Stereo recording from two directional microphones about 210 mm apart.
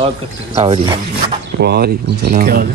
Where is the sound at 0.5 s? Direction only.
25° right (ahead or behind).